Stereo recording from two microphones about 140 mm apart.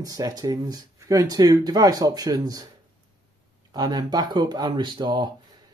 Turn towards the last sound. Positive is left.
turn(degrees=-30)  # may be behind; listen again after turning